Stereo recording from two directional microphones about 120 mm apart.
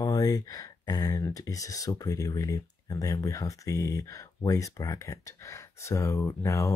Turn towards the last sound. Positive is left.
turn(degrees=25)  # may be behind; listen again after turning